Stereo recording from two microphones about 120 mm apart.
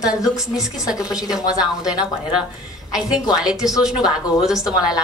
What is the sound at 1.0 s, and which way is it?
A woman's voice, 5° right (ahead or behind).